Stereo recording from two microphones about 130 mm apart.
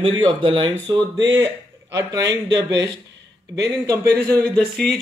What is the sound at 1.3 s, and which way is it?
Speech, 20° right (ahead or behind).